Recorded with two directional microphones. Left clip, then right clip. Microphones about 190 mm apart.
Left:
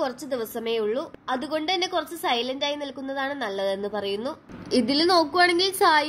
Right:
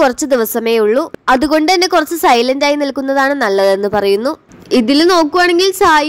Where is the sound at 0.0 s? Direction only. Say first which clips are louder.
Right 16 dB; 45° right (ahead or behind).